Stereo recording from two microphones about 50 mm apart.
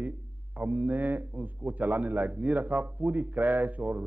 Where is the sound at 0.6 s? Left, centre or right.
Right.